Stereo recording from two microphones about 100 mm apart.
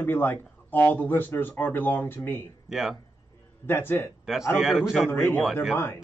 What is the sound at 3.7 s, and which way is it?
Speech, 20° left (ahead or behind).